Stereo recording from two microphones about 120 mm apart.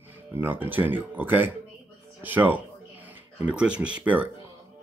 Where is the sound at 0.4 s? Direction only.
15° right (ahead or behind).